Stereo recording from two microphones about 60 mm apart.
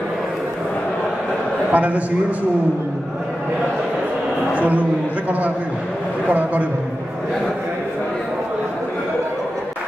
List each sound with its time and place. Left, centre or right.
1.7 s a man's voice: right
4.6 s a man's voice: right
6.2 s a man's voice: right